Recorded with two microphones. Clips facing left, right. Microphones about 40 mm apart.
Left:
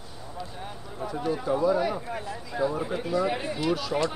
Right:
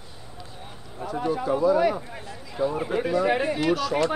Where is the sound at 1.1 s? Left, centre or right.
Centre.